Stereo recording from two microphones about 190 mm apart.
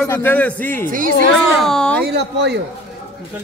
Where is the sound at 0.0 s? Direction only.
10° left (ahead or behind).